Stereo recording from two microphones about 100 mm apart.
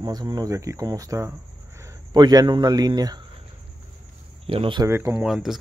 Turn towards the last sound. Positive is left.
turn(degrees=-5)  # may be behind; listen again after turning